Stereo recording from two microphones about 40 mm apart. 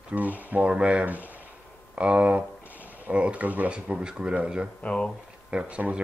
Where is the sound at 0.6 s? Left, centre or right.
Right.